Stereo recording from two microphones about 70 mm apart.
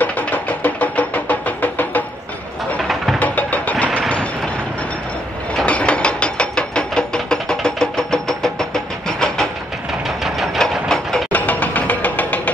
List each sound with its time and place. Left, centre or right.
0.0 s music: left
2.8 s music: centre
3.2 s vehicle: left
5.5 s ratchet: centre
10.0 s a sound: centre
10.9 s ratchet: centre
11.3 s music: left